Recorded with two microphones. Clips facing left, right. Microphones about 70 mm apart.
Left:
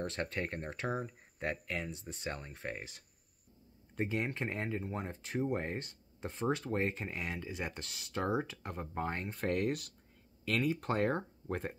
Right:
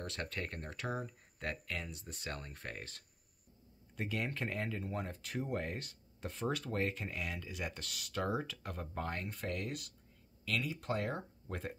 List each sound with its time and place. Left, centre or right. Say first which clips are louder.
0.0 s speech: left 5 dB; left
9.4 s speech: left 7 dB; left